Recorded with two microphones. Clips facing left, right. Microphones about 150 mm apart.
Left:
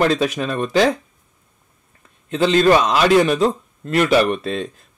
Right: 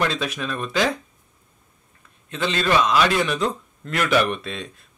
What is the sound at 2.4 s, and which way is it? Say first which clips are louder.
A man's voice: left 7 dB; 40° left (ahead or behind).